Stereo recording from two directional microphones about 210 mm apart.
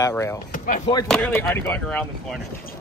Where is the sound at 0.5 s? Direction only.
40° left (ahead or behind).